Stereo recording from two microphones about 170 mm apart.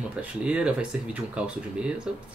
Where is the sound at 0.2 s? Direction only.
5° right (ahead or behind).